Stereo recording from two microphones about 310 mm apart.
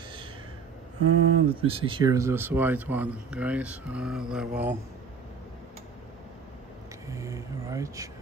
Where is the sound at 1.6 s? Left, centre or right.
Centre.